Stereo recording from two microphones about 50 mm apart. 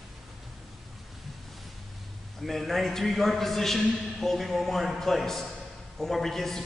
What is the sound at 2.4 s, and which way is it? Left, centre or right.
A man's voice, centre.